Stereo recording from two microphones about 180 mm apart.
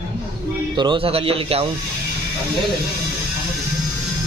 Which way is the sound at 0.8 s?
30° right (ahead or behind).